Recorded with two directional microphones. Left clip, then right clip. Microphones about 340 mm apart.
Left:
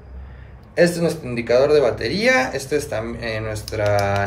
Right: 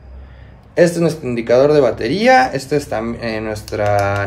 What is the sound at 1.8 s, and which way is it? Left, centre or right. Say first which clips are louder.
Speech: right 4 dB; right.